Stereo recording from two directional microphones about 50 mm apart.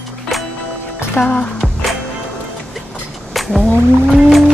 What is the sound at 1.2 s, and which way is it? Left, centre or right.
Music, left.